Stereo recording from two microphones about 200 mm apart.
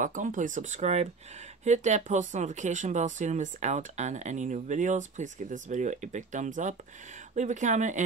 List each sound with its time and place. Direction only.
0.0 s speech: 40° right (ahead or behind)